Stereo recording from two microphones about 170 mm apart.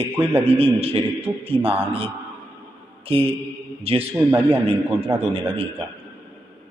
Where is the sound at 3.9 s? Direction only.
35° right (ahead or behind).